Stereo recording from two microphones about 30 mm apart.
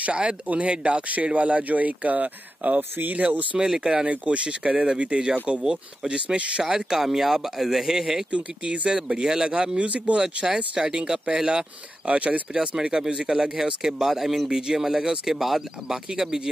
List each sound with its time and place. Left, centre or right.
0.1 s speech: right
0.5 s speech: right
3.6 s speech: right
4.1 s speech: right
4.5 s speech: right
6.7 s speech: centre
9.6 s speech: right
10.1 s speech: right
12.1 s speech: right
12.9 s speech: right; by 14.5 s centre
14.5 s speech: centre
15.3 s speech: centre
16.1 s speech: centre